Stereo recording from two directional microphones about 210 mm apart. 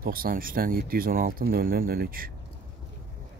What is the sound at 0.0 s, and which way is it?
Speech, 45° right (ahead or behind).